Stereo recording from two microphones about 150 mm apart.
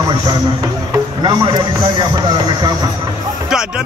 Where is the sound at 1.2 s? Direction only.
30° right (ahead or behind).